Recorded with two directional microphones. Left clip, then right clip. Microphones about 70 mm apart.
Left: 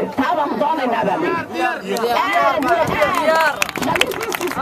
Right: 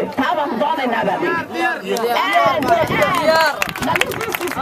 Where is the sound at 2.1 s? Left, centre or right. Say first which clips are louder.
Right 1 dB; centre.